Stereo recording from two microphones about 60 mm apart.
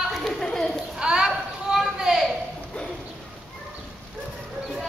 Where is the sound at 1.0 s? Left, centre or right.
Centre.